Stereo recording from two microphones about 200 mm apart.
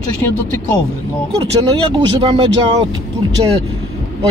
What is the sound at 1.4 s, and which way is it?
Speech, 20° right (ahead or behind).